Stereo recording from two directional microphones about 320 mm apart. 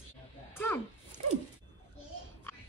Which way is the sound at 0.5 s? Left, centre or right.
Centre.